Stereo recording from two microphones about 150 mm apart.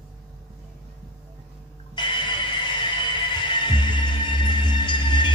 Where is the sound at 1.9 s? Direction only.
30° left (ahead or behind).